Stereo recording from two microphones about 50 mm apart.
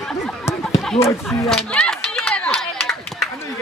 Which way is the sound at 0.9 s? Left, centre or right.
Left.